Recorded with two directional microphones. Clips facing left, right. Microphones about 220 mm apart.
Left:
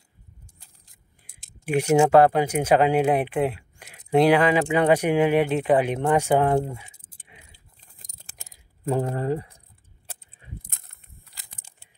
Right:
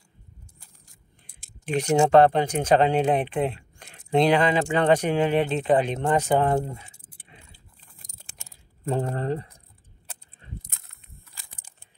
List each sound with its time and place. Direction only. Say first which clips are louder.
1.7 s speech: left 2 dB; 10° left (ahead or behind)
7.2 s keys jangling: right 1 dB; 20° left (ahead or behind)
8.5 s speech: left 2 dB; 15° left (ahead or behind)
10.6 s a sound: left 1 dB; 50° left (ahead or behind)